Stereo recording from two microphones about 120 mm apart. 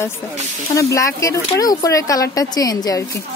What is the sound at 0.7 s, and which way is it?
Speech, 25° left (ahead or behind).